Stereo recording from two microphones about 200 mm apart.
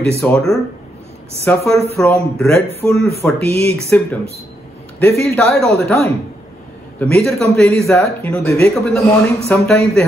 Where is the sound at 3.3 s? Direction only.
30° right (ahead or behind).